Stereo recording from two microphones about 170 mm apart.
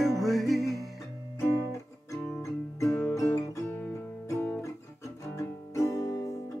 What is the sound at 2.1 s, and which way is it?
Guitar, 5° left (ahead or behind).